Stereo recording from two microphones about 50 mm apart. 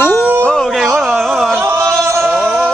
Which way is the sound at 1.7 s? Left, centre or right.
Right.